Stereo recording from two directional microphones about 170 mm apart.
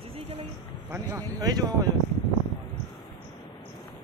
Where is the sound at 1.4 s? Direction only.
25° right (ahead or behind).